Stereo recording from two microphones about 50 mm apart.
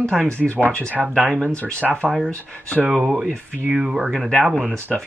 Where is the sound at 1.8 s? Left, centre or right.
Centre.